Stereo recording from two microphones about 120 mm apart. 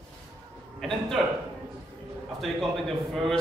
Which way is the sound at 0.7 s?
5° left (ahead or behind).